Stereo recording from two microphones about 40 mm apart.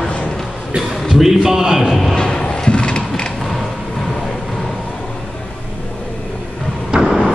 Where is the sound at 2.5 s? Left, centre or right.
Left.